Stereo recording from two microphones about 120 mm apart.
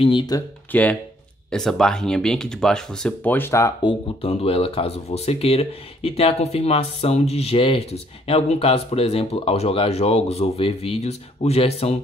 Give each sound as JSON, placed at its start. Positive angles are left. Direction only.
{"t": 0.0, "sound": "speech", "side_deg": 45}
{"t": 0.7, "sound": "speech", "side_deg": 10}
{"t": 3.8, "sound": "speech", "side_deg": 50}